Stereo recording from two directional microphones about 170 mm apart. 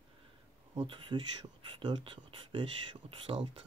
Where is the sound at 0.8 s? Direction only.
30° right (ahead or behind).